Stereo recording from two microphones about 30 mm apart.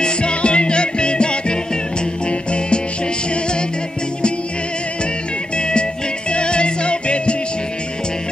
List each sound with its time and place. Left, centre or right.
0.0 s music: left
5.6 s music: left